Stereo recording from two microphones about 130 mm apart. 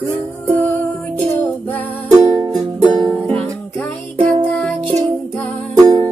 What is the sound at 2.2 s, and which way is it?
Music, 30° right (ahead or behind).